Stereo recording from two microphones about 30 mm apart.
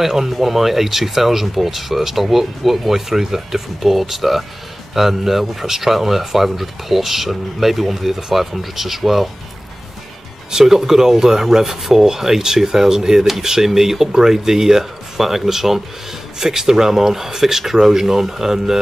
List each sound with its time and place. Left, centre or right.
0.0 s speech: centre
10.6 s speech: centre